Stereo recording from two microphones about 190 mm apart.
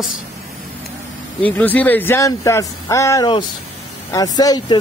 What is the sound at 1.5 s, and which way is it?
Speech, 10° left (ahead or behind).